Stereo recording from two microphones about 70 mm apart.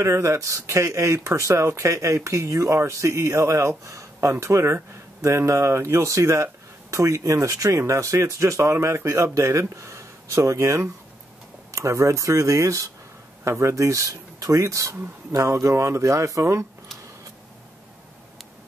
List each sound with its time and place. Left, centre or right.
0.0 s speech: right